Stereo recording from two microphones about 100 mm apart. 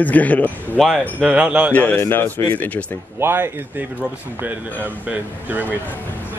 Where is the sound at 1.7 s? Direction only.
15° left (ahead or behind).